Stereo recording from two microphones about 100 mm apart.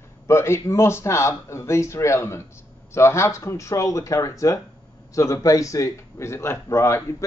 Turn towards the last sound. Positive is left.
turn(degrees=30)  # may be behind; listen again after turning